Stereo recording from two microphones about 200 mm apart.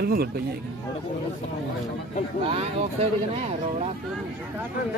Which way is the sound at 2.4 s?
30° right (ahead or behind).